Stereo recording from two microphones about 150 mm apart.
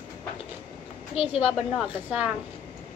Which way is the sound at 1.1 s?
40° left (ahead or behind).